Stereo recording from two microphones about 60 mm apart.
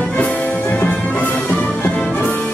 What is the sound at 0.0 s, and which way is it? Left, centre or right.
Music, left.